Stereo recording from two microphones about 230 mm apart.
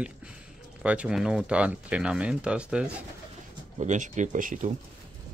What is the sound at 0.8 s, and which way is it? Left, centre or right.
Speech, centre.